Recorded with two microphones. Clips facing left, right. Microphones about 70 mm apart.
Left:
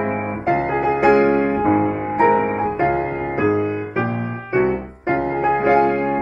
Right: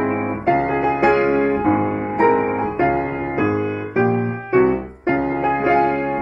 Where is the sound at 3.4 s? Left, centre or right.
Centre.